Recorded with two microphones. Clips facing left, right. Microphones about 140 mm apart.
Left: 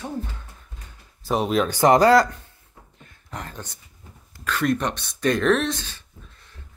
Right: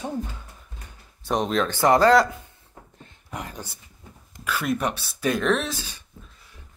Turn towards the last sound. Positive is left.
turn(degrees=-5)  # may be behind; listen again after turning